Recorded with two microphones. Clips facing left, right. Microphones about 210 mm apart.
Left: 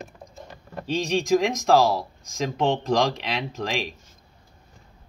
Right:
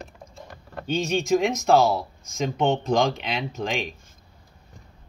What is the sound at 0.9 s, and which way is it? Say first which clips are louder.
Speech: left 1 dB; centre (ahead or behind).